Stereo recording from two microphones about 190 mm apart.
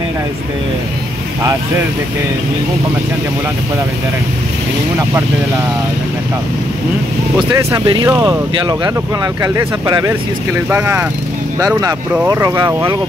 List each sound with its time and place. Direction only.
7.3 s speech: 20° right (ahead or behind)
12.3 s speech: 20° right (ahead or behind)